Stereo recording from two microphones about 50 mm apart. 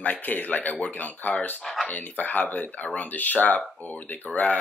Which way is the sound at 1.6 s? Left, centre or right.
Centre.